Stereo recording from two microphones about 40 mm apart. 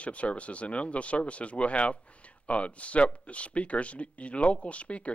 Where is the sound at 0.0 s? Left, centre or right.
Left.